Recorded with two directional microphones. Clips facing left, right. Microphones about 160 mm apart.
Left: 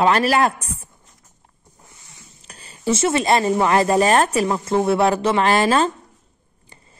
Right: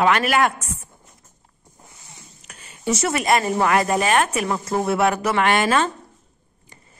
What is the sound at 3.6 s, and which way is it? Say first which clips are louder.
A man's voice: left 3 dB; 30° left (ahead or behind).